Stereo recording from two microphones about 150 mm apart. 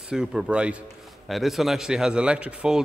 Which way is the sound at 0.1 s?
5° right (ahead or behind).